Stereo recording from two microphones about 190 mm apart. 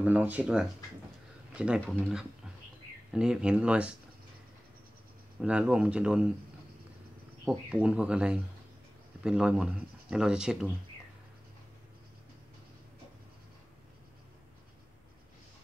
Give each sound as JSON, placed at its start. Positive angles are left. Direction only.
{"t": 0.0, "sound": "speech", "side_deg": -10}
{"t": 5.4, "sound": "speech", "side_deg": -5}
{"t": 7.4, "sound": "speech", "side_deg": -5}